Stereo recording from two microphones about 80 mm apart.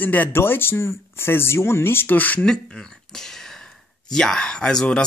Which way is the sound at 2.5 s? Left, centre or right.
Centre.